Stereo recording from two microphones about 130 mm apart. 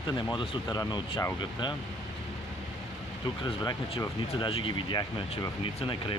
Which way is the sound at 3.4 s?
40° left (ahead or behind).